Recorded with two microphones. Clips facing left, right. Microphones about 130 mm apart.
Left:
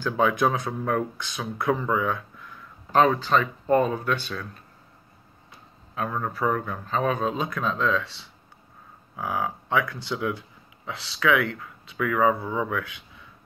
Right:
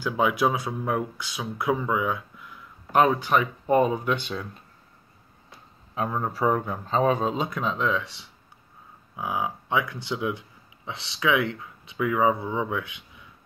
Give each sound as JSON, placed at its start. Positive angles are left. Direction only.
{"t": 0.0, "sound": "speech", "side_deg": -10}
{"t": 5.9, "sound": "speech", "side_deg": -25}